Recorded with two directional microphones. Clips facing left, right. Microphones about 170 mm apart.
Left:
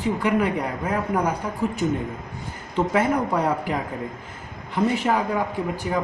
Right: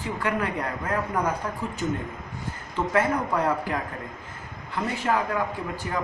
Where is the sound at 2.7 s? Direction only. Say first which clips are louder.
Left 3 dB; 15° left (ahead or behind).